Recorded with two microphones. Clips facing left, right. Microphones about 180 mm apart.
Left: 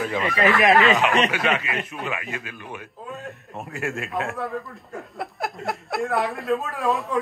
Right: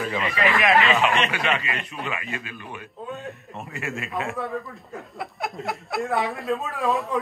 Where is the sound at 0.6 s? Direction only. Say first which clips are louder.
Left 2 dB; 40° left (ahead or behind).